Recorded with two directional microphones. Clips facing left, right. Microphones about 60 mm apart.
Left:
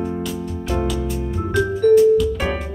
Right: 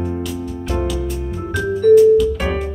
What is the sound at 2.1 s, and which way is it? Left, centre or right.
Music, centre.